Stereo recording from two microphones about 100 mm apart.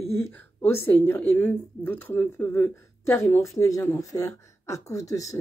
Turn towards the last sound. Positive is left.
turn(degrees=35)  # may be behind; listen again after turning